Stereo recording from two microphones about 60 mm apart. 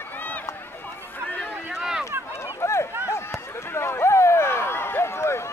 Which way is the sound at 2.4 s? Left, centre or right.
Left.